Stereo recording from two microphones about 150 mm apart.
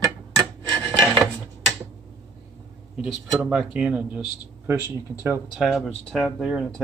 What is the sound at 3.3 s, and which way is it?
Speech, 5° right (ahead or behind).